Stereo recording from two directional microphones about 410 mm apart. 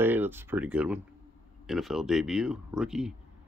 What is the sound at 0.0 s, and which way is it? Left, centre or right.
Speech, centre.